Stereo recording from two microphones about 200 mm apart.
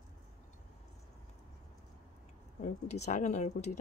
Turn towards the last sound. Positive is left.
turn(degrees=35)  # may be behind; listen again after turning